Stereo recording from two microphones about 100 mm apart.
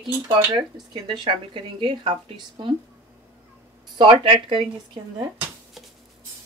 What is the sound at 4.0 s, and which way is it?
Speech, 55° right (ahead or behind).